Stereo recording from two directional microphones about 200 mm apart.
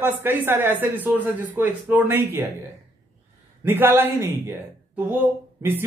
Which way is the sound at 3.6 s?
10° right (ahead or behind).